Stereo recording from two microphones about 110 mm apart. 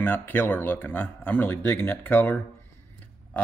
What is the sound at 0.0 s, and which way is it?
Speech, 20° left (ahead or behind).